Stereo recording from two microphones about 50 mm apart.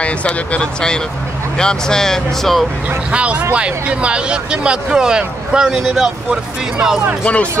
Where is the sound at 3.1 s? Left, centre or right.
Right.